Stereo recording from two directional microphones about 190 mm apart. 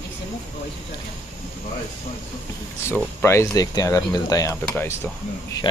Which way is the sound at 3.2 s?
15° left (ahead or behind).